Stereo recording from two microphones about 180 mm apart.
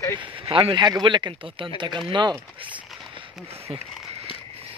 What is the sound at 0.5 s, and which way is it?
Speech, 30° right (ahead or behind).